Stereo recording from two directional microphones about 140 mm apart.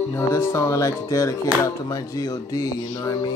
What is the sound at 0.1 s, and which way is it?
Music, 20° left (ahead or behind).